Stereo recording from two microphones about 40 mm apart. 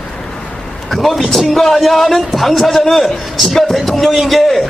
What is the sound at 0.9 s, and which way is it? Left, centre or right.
A man's voice, centre.